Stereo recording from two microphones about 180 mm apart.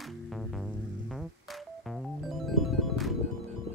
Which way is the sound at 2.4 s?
Centre (ahead or behind).